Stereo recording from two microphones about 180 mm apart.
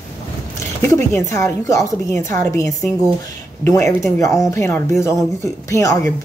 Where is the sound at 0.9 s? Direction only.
15° left (ahead or behind).